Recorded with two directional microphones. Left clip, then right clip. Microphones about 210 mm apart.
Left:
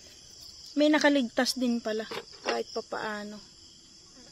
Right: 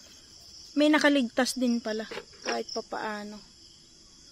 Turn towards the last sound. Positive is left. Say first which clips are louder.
# even
turn(degrees=-10)  # may be behind; listen again after turning